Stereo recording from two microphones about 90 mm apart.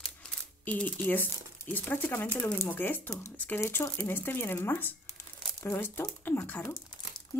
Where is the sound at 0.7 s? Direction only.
15° left (ahead or behind).